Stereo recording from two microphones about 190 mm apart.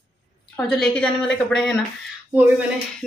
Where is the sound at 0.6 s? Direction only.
5° left (ahead or behind).